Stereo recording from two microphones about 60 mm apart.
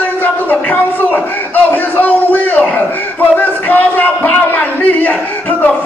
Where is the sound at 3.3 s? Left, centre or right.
Left.